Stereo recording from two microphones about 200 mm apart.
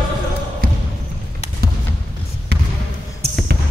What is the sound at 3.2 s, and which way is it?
Basketball bounce, 30° right (ahead or behind).